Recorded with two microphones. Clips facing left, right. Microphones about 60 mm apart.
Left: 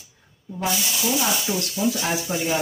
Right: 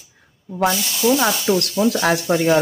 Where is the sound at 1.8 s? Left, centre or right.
Right.